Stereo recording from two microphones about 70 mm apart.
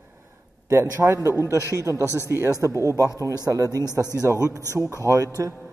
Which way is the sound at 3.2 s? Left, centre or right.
Right.